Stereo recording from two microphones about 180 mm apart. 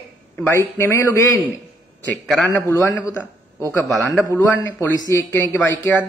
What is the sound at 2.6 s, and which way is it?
Speech, 15° left (ahead or behind).